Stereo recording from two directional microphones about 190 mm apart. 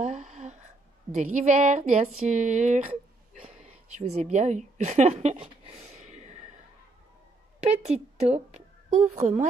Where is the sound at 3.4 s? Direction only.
35° right (ahead or behind).